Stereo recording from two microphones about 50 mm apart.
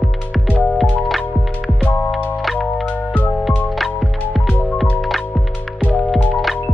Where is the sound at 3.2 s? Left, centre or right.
Left.